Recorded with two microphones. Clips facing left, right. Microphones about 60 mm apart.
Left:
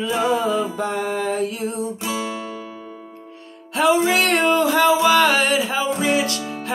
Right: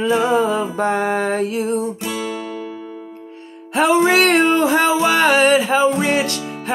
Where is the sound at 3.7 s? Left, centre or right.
Right.